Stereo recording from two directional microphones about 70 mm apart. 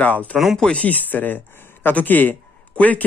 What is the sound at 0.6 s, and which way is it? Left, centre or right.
A man's voice, centre.